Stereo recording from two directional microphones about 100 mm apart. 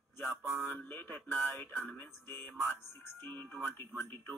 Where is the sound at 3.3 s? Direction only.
20° left (ahead or behind).